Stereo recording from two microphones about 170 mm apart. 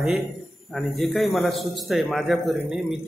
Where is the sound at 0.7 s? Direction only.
Centre (ahead or behind).